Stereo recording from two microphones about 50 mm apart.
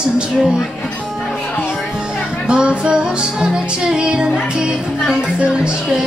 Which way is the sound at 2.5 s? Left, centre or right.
Centre.